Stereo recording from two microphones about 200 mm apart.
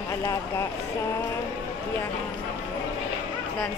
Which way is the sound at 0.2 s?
15° left (ahead or behind).